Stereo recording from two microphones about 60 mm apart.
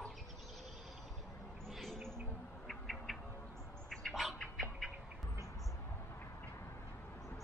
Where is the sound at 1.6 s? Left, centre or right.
Centre.